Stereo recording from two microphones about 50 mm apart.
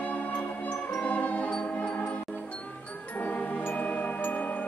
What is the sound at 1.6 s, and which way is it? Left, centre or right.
Music, centre.